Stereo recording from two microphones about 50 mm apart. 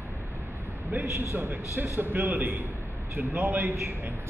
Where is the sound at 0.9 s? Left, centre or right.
Right.